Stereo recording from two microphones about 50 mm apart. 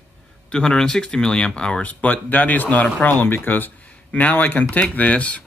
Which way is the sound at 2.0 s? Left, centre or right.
Left.